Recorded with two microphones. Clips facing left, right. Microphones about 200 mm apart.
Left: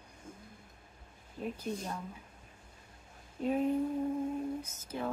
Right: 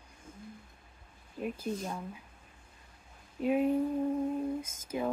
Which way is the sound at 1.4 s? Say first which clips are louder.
Right 2 dB; 10° right (ahead or behind).